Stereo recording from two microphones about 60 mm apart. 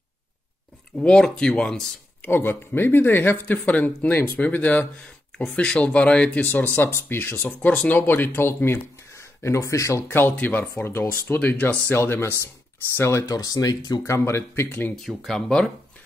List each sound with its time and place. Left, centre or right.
0.9 s speech: centre
2.2 s speech: left; by 6.4 s centre
6.4 s speech: left
7.4 s speech: left
9.1 s speech: left
10.0 s speech: left
10.3 s speech: left
10.8 s speech: left
11.9 s speech: left
13.3 s speech: left
14.0 s speech: left
14.7 s speech: left
15.0 s speech: centre